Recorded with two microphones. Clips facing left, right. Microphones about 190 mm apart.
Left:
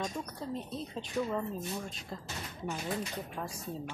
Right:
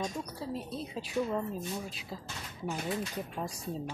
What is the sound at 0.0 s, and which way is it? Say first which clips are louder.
Speech: right 1 dB; 5° right (ahead or behind).